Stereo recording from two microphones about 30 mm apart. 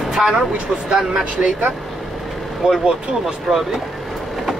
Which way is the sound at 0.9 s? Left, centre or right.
Centre.